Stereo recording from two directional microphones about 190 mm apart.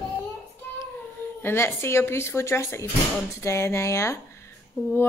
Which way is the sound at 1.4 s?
15° left (ahead or behind).